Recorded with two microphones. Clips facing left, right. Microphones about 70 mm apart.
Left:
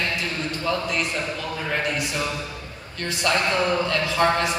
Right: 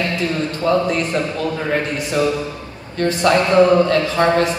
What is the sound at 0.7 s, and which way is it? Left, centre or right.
Speech, right.